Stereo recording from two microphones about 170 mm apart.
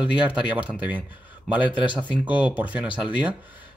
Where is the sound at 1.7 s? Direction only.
30° left (ahead or behind).